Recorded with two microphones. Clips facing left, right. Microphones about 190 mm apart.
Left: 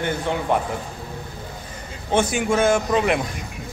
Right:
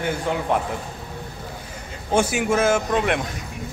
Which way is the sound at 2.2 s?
5° right (ahead or behind).